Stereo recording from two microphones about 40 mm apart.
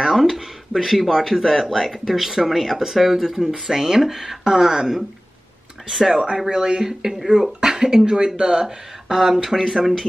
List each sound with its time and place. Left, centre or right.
0.0 s speech: centre
6.1 s speech: centre